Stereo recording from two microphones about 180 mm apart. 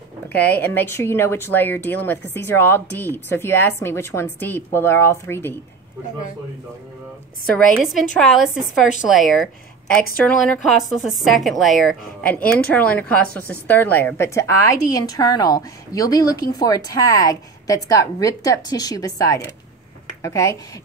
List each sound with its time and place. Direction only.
0.3 s a woman's voice: 10° left (ahead or behind)
7.5 s a woman's voice: 5° left (ahead or behind)